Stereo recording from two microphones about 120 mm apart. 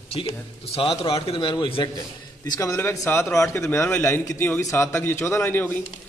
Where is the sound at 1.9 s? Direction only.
25° left (ahead or behind).